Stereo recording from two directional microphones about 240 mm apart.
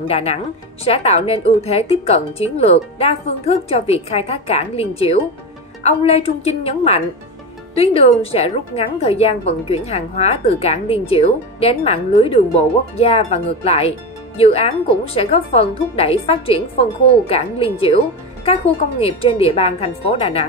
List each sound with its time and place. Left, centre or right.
0.1 s a woman's voice: left